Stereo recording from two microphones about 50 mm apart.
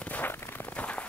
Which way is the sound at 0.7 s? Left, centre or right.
Left.